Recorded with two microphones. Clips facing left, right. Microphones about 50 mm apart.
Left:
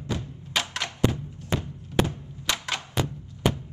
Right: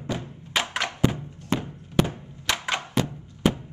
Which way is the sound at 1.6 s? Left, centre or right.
Right.